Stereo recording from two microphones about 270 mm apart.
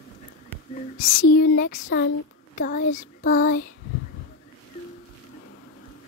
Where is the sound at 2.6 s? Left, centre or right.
Left.